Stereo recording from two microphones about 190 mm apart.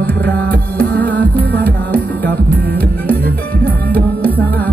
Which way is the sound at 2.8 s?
55° right (ahead or behind).